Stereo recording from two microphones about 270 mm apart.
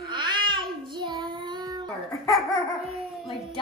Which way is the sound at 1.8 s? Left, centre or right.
Centre.